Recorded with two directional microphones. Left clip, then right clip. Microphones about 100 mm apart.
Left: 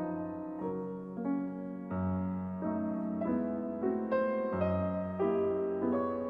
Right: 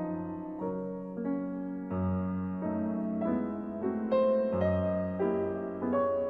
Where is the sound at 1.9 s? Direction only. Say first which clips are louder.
Right 1 dB; 25° right (ahead or behind).